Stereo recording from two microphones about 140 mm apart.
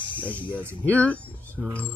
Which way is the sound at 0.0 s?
35° left (ahead or behind).